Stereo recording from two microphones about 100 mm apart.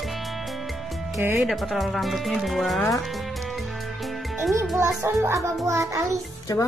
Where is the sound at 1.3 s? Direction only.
Centre (ahead or behind).